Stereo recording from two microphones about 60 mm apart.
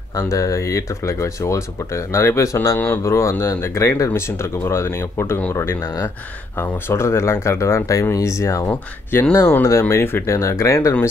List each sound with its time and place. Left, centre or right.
0.2 s speech: left
9.3 s speech: left
10.3 s speech: left